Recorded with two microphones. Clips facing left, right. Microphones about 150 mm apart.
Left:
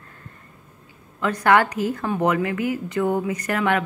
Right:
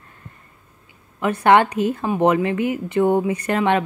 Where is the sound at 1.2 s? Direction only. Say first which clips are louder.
Right 3 dB; 25° right (ahead or behind).